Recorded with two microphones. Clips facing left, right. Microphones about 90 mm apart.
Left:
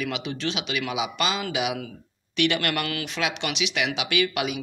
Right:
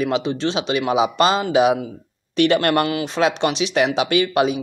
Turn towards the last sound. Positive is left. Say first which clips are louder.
# right 8 dB
turn(degrees=-35)  # may be behind; listen again after turning